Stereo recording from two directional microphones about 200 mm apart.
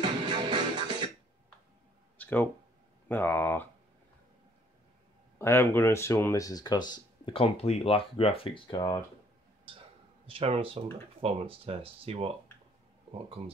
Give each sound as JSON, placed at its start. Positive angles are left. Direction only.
{"t": 0.0, "sound": "music", "side_deg": -20}
{"t": 2.1, "sound": "a sound", "side_deg": 10}
{"t": 3.1, "sound": "speech", "side_deg": 10}
{"t": 5.4, "sound": "speech", "side_deg": 10}
{"t": 10.2, "sound": "speech", "side_deg": -30}